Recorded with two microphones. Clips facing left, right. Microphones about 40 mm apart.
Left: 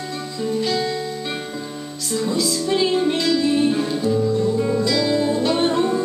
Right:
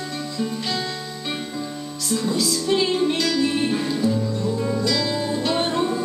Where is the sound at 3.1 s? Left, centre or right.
Centre.